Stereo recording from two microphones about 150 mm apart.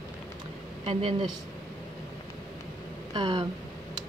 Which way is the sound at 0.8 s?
40° right (ahead or behind).